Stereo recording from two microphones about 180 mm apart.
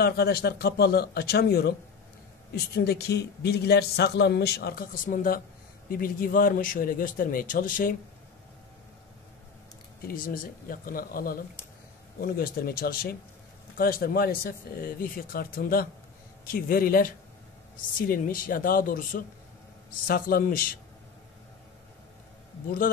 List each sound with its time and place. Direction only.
0.0 s a man's voice: 60° left (ahead or behind)
10.0 s a man's voice: 50° left (ahead or behind)